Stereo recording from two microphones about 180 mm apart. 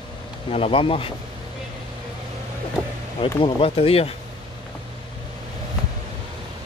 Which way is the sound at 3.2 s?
30° left (ahead or behind).